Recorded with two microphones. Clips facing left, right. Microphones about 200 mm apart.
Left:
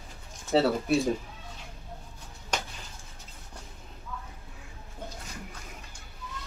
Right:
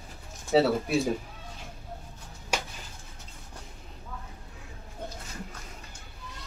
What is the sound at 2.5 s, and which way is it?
Music, 10° right (ahead or behind).